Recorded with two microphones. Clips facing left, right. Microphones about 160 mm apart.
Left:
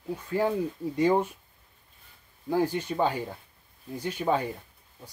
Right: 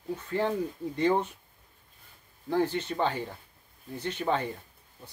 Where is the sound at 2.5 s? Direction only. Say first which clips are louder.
Left 1 dB; 10° left (ahead or behind).